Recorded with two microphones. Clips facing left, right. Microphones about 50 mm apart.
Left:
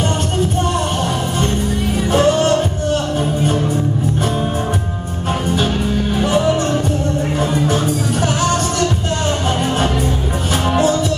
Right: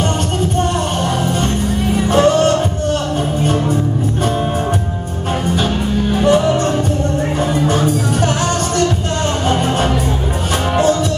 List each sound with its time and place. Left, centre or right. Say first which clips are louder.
2.2 s music: right 2 dB; centre
6.2 s music: right 4 dB; centre
7.7 s music: right 2 dB; centre